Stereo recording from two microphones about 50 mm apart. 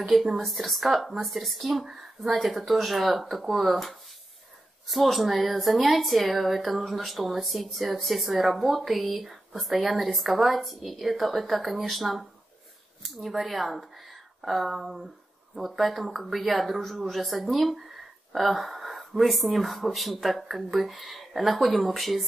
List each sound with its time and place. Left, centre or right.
0.0 s speech: centre